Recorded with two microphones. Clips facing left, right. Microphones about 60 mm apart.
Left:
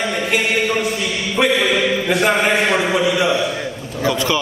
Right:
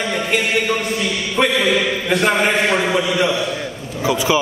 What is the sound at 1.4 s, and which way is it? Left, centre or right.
A man's voice, centre.